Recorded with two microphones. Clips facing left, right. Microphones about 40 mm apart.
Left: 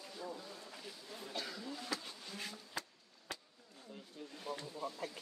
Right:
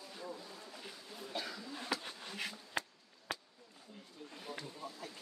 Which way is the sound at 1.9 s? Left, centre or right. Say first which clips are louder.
Right 3 dB; right.